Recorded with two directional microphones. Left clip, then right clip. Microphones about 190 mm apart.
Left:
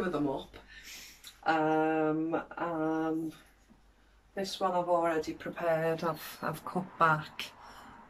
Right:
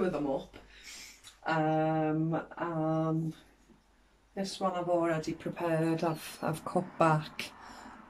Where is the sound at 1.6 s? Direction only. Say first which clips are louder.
Right 1 dB; centre (ahead or behind).